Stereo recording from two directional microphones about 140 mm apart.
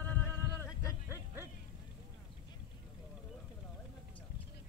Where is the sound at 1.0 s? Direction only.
15° right (ahead or behind).